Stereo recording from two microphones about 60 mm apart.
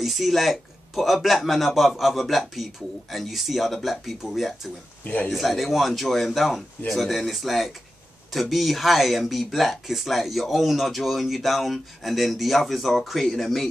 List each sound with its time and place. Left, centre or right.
0.0 s speech: centre
5.0 s a man's voice: left
5.3 s speech: centre